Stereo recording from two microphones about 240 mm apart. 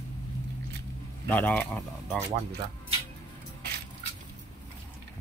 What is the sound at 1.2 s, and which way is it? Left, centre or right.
Speech, centre.